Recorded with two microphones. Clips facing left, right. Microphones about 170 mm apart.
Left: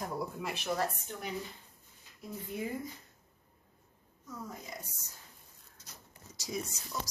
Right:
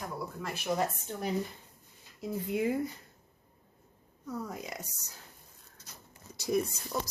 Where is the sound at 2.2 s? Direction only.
80° right.